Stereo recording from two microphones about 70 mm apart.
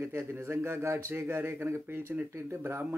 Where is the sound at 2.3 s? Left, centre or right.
Right.